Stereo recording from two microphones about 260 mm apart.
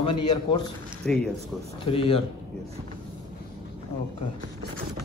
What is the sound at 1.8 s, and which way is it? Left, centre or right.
Speech, left.